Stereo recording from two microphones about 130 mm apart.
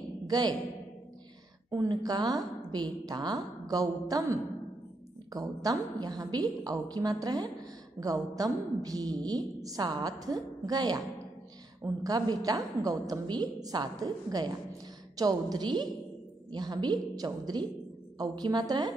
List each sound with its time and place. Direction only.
1.7 s a woman's voice: 25° right (ahead or behind)